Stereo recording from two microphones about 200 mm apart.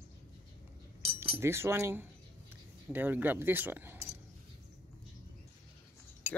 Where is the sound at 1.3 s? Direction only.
10° right (ahead or behind).